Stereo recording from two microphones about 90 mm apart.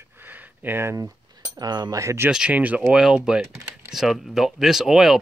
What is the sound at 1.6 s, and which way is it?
Speech, 45° right (ahead or behind).